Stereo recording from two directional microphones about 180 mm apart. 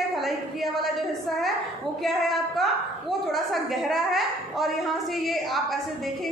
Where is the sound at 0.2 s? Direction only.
Centre (ahead or behind).